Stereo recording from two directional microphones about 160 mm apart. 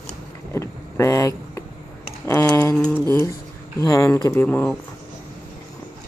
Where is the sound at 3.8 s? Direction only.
20° left (ahead or behind).